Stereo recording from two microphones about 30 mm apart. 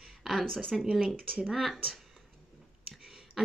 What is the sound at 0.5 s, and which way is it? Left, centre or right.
Speech, centre.